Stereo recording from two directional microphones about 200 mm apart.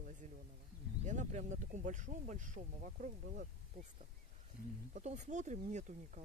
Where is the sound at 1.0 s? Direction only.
35° right (ahead or behind).